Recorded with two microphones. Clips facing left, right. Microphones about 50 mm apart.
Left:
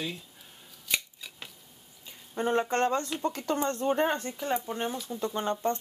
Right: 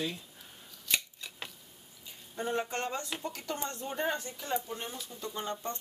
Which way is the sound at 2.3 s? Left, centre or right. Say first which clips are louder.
Left 7 dB; left.